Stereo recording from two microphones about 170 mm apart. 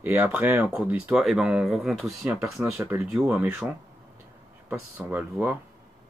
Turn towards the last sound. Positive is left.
turn(degrees=-10)  # may be behind; listen again after turning